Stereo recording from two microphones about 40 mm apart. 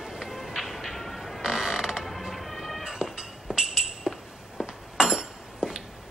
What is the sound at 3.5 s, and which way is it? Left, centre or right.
Music, centre.